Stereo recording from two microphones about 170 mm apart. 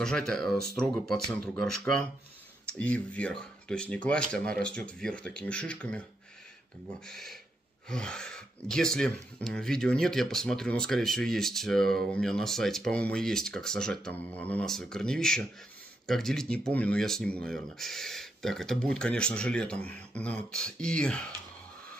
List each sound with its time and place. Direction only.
0.0 s speech: 5° left (ahead or behind)
7.1 s speech: centre (ahead or behind)